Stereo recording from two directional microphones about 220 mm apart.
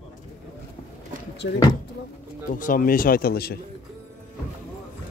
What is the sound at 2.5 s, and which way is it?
Speech, 40° left (ahead or behind).